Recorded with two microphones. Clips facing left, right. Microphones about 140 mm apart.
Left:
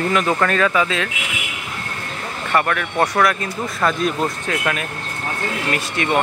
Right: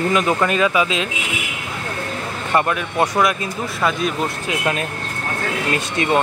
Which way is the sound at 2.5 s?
20° right (ahead or behind).